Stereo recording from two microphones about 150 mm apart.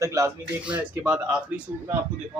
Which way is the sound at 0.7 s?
10° right (ahead or behind).